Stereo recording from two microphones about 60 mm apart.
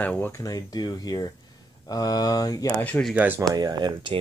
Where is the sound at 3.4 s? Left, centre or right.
Right.